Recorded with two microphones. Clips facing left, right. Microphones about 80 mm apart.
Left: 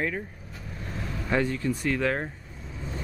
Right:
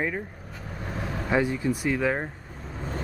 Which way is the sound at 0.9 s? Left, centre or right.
Right.